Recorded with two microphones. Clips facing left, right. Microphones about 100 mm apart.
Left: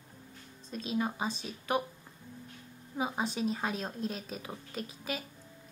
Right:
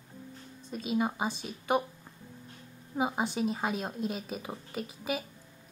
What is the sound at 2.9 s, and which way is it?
A woman's voice, 15° right (ahead or behind).